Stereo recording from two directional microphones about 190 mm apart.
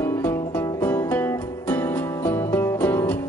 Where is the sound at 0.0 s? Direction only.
10° left (ahead or behind).